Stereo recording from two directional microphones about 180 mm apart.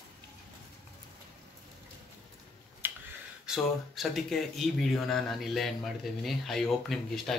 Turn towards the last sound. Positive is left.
turn(degrees=0)  # may be behind; listen again after turning